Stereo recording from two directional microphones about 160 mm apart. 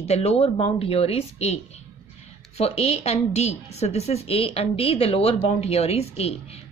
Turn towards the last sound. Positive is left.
turn(degrees=40)  # may be behind; listen again after turning